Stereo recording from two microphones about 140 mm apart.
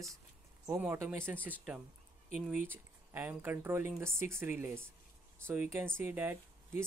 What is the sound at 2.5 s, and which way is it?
Speech, 15° right (ahead or behind).